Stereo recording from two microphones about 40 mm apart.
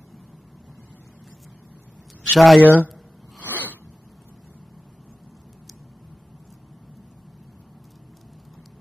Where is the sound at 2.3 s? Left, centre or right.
Centre.